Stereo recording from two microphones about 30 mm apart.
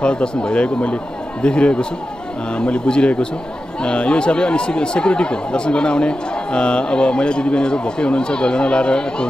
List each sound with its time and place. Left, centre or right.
0.0 s speech: left